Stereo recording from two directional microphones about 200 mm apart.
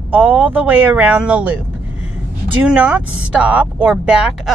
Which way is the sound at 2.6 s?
5° right (ahead or behind).